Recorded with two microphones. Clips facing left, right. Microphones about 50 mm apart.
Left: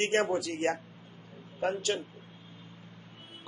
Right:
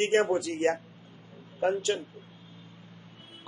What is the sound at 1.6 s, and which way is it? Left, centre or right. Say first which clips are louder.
Speech: right 3 dB; centre.